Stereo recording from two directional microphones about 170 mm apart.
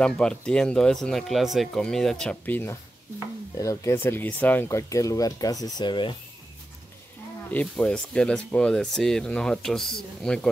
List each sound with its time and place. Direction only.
0.0 s speech: 5° left (ahead or behind); by 6.1 s 25° left (ahead or behind)
7.5 s speech: 5° left (ahead or behind)